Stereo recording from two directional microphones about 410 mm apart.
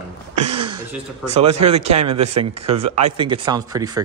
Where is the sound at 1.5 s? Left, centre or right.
Right.